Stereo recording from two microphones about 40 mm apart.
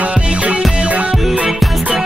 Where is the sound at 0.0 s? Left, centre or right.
Right.